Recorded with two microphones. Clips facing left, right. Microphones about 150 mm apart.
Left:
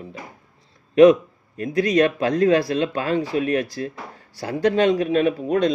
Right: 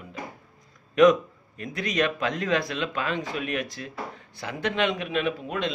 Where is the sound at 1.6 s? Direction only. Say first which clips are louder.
Left 9 dB; 35° left (ahead or behind).